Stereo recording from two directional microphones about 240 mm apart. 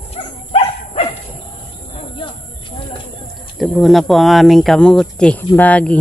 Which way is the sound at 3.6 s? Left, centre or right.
Centre.